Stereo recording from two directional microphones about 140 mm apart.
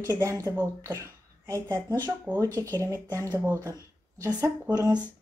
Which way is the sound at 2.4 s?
15° left (ahead or behind).